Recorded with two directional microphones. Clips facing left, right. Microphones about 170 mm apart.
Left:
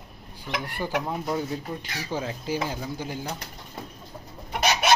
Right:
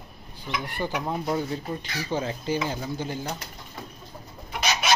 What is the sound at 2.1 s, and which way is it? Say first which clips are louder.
Speech: right 1 dB; 5° left (ahead or behind).